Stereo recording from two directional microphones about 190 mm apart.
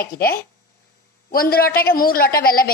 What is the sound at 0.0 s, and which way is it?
A woman's voice, 50° left (ahead or behind).